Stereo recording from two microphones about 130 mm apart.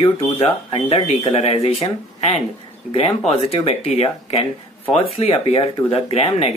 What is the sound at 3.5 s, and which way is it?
Speech, 50° left (ahead or behind).